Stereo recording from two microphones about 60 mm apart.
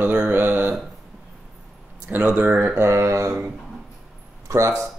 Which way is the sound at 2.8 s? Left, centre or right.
Right.